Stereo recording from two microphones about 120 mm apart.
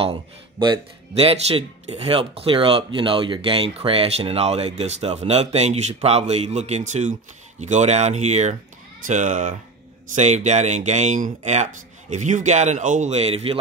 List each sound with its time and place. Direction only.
1.1 s speech: 55° right (ahead or behind); by 7.2 s 85° right
7.6 s speech: 75° right (ahead or behind)
9.0 s speech: 90° right
10.1 s speech: 75° right (ahead or behind); by 13.6 s 55° right (ahead or behind)